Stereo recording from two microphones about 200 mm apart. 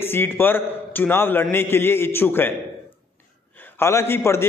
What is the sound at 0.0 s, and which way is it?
A man's voice, 10° left (ahead or behind).